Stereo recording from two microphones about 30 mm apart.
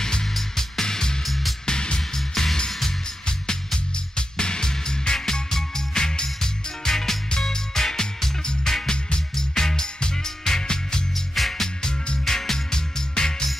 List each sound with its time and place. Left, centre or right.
0.0 s music: left
1.2 s music: centre
1.7 s music: left
2.0 s music: centre
3.3 s music: left
8.8 s music: left
9.3 s music: centre
11.3 s music: centre
12.3 s music: centre